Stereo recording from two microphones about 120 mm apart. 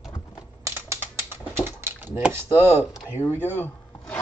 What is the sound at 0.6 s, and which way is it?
Typing, 20° right (ahead or behind).